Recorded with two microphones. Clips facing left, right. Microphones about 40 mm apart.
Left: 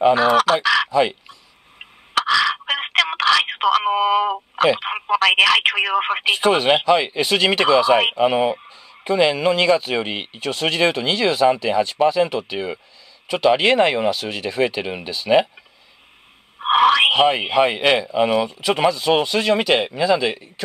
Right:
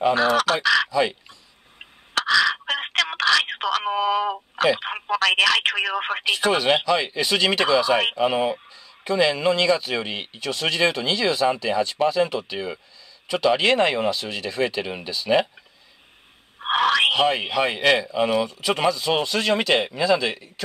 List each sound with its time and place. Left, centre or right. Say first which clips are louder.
0.0 s speech: left 4 dB; centre
2.1 s telephone: left 2 dB; centre
3.8 s speech: left 4 dB; centre
5.1 s speech: left 4 dB; centre
16.5 s speech: left 5 dB; centre